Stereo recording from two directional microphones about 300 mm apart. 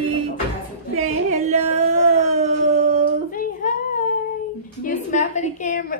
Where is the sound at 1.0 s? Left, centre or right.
Right.